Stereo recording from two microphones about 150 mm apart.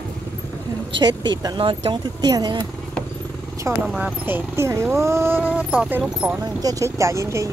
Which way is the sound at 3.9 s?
10° right (ahead or behind).